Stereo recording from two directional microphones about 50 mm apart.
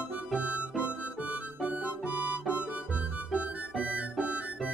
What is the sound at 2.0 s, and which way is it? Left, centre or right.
Harmonica, right.